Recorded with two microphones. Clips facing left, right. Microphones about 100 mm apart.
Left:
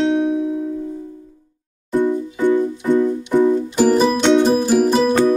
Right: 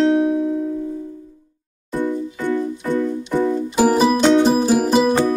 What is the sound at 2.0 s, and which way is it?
Music, 15° left (ahead or behind).